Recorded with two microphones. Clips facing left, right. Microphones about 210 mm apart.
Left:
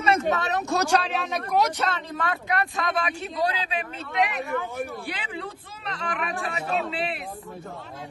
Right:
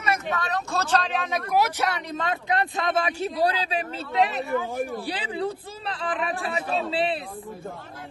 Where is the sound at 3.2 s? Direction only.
35° right (ahead or behind).